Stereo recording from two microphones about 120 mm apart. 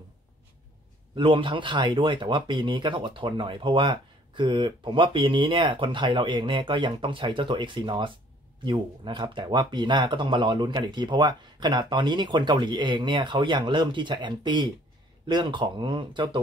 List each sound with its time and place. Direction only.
1.1 s speech: 45° right (ahead or behind)